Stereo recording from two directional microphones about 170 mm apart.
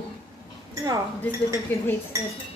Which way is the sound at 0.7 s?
20° right (ahead or behind).